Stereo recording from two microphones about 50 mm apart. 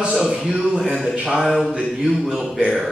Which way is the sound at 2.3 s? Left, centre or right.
Centre.